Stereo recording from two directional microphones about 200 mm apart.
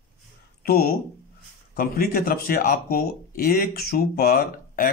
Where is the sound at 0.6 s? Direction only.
50° left (ahead or behind).